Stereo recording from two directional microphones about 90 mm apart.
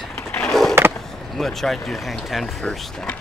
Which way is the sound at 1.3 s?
5° left (ahead or behind).